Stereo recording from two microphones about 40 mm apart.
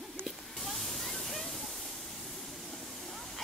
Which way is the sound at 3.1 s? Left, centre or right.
Centre.